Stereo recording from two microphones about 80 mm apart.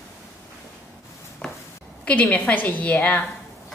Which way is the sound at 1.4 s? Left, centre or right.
Centre.